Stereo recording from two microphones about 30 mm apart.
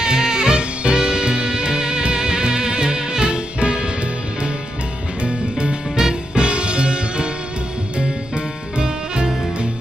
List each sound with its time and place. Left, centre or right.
0.0 s music: right
5.2 s music: right
5.9 s music: centre
6.4 s music: right
8.4 s music: right